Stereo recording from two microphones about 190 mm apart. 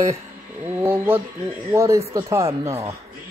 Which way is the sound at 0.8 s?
10° right (ahead or behind).